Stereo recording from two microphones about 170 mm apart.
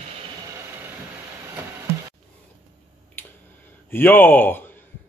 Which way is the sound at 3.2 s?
15° left (ahead or behind).